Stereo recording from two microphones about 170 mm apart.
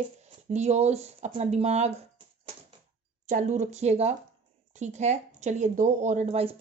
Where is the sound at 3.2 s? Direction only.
45° right (ahead or behind).